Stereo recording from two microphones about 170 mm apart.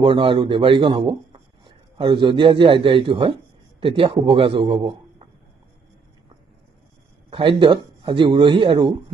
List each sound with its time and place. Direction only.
0.0 s speech: 30° right (ahead or behind)
7.2 s speech: 30° right (ahead or behind)